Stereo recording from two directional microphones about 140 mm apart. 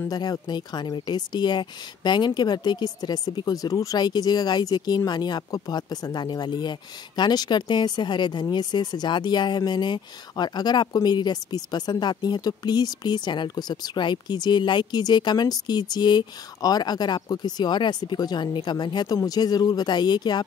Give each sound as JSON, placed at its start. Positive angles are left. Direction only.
{"t": 0.1, "sound": "speech", "side_deg": 30}